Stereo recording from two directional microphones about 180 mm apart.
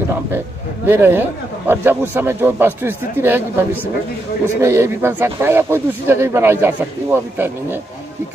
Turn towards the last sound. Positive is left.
turn(degrees=-15)  # may be behind; listen again after turning